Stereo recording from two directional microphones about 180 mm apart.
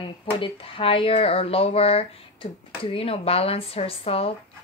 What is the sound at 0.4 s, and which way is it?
Speech, 30° left (ahead or behind).